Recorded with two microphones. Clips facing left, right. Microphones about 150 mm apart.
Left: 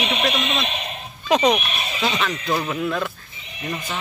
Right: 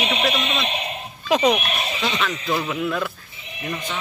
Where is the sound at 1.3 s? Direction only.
5° right (ahead or behind).